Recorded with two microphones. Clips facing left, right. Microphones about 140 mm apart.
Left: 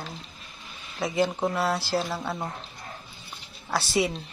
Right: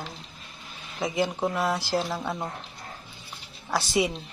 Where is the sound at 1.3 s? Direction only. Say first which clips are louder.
Even; 10° left (ahead or behind).